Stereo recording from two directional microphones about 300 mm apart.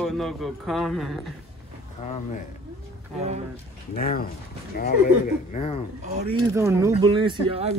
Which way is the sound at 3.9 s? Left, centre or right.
Left.